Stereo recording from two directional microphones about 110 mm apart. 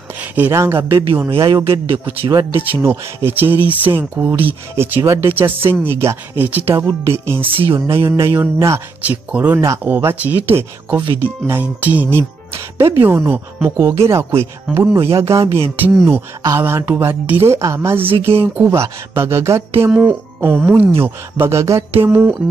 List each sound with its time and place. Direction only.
0.1 s a sound: 15° right (ahead or behind)
0.6 s speech: 20° right (ahead or behind)
1.3 s speech: 55° right (ahead or behind)
2.5 s speech: 20° right (ahead or behind)
7.4 s speech: 55° right (ahead or behind)
8.0 s speech: 25° right (ahead or behind)
9.0 s speech: 15° right (ahead or behind)
18.0 s speech: 60° right (ahead or behind)
18.4 s speech: 20° right (ahead or behind)
19.9 s speech: 15° right (ahead or behind)